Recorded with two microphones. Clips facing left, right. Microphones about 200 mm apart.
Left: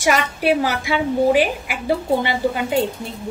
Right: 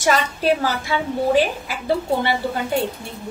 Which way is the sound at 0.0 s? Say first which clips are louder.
Left 1 dB; 10° left (ahead or behind).